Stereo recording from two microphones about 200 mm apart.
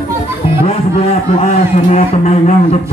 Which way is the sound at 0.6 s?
35° left (ahead or behind).